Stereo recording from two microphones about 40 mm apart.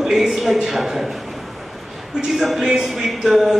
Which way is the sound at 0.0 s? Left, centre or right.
Centre.